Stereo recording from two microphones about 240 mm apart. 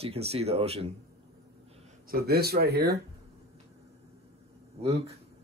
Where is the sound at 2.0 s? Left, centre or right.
Right.